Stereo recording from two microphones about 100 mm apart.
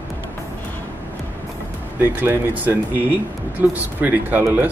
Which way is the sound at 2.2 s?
20° right (ahead or behind).